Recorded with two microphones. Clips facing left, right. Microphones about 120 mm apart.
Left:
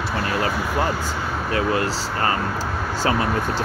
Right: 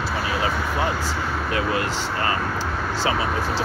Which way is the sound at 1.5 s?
35° left (ahead or behind).